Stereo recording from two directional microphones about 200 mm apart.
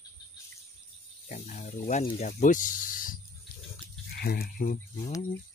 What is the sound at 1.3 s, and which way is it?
Speech, 35° left (ahead or behind).